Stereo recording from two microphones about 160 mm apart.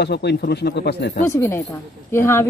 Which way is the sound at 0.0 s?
90° left.